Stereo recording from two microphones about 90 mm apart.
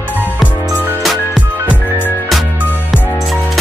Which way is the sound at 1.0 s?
Centre (ahead or behind).